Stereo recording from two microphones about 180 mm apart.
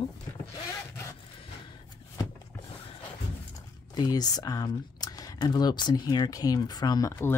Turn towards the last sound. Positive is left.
turn(degrees=15)  # may be behind; listen again after turning